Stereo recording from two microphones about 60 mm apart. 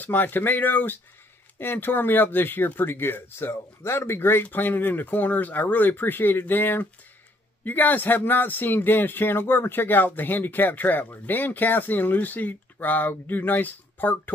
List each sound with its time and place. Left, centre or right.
0.0 s speech: left